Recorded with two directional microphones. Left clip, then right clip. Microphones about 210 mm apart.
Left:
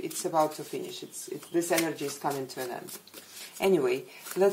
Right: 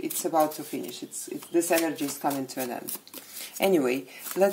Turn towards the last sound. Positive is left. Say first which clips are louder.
# right 2 dB
turn(degrees=-50)  # may be behind; listen again after turning